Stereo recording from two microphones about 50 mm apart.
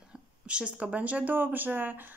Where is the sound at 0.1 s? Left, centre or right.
Right.